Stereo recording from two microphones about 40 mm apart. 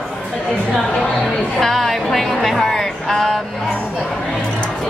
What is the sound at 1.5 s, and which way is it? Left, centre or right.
A woman's voice, centre.